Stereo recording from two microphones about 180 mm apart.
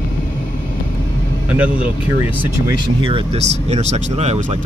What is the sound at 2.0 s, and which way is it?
Speech, 10° right (ahead or behind).